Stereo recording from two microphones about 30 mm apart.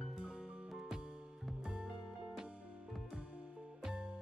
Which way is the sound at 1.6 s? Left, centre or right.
Centre.